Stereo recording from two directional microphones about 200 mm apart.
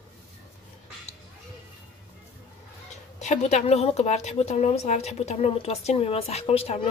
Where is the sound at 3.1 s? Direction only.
35° left (ahead or behind).